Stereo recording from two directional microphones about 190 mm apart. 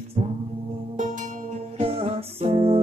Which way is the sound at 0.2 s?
35° right (ahead or behind).